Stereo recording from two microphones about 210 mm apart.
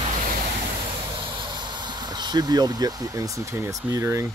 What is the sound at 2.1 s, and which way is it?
Speech, 20° right (ahead or behind).